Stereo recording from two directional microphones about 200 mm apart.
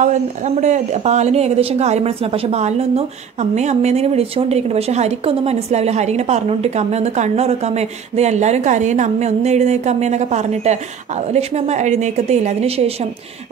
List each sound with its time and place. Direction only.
0.6 s a woman's voice: 35° right (ahead or behind)